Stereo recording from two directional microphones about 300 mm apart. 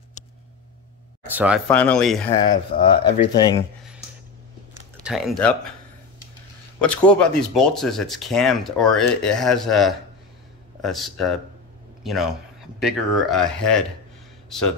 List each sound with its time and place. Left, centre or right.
1.2 s speech: centre
2.4 s speech: centre
4.9 s speech: centre
6.8 s a man's voice: centre